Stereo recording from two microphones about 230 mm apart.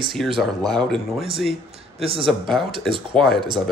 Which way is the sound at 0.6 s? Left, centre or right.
Centre.